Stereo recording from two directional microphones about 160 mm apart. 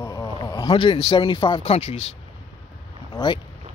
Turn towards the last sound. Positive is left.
turn(degrees=30)  # may be behind; listen again after turning